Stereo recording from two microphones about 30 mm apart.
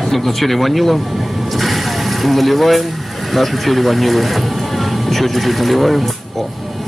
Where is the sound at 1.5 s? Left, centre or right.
Centre.